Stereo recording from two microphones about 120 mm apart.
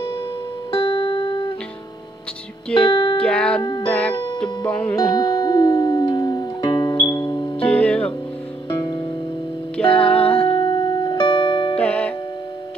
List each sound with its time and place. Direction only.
0.7 s music: 45° left (ahead or behind)
2.9 s music: 40° left (ahead or behind)
3.2 s music: 10° left (ahead or behind)
4.1 s music: 35° left (ahead or behind)
4.4 s music: 10° left (ahead or behind)
4.9 s music: 35° left (ahead or behind)
7.0 s music: 25° left (ahead or behind)
7.6 s music: 10° left (ahead or behind)
9.8 s music: 10° left (ahead or behind)
10.1 s music: 50° left (ahead or behind)
11.8 s music: 10° left (ahead or behind)